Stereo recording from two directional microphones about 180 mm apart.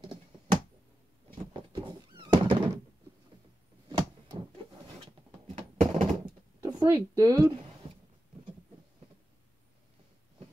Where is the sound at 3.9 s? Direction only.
25° right (ahead or behind).